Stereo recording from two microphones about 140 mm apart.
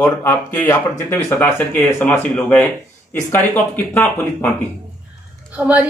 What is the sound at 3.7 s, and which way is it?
Speech, 15° left (ahead or behind).